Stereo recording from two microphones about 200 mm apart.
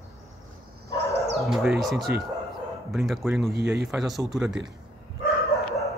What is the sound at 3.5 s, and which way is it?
Speech, 60° right (ahead or behind).